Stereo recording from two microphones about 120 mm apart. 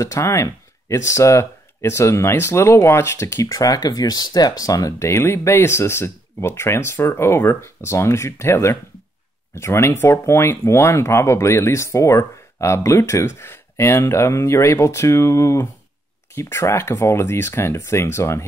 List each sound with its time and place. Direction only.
0.0 s speech: 25° left (ahead or behind)